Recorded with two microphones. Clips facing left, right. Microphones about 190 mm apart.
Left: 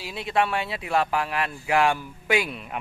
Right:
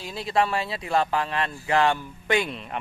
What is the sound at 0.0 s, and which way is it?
Speech, centre (ahead or behind).